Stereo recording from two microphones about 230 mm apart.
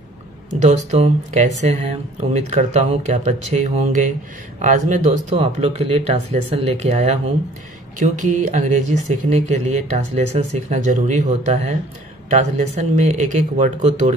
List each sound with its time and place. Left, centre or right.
0.6 s speech: right